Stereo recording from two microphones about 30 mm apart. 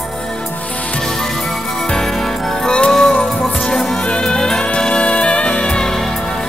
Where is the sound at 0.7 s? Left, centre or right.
Left.